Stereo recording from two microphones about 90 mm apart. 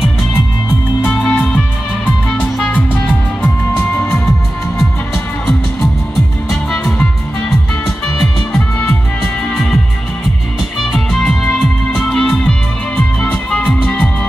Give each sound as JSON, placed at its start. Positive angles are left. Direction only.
{"t": 1.0, "sound": "music", "side_deg": 15}
{"t": 7.0, "sound": "music", "side_deg": 5}
{"t": 11.2, "sound": "music", "side_deg": 10}